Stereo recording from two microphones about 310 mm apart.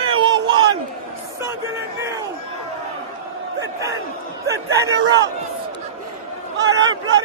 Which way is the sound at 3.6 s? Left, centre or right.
Centre.